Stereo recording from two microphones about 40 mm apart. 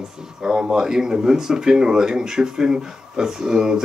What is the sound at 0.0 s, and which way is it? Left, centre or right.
Speech, centre.